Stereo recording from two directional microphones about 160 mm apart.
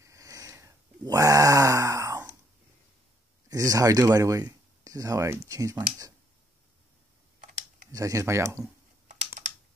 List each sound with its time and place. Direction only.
0.0 s a sound: 20° right (ahead or behind)
3.4 s speech: 20° right (ahead or behind)
7.9 s speech: 20° right (ahead or behind)
9.0 s typing: 45° right (ahead or behind)